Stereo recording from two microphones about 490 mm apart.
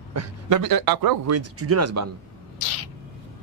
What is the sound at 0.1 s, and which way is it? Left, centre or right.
A man's voice, right.